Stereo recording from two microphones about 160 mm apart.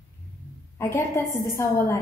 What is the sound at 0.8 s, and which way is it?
A woman's voice, 15° left (ahead or behind).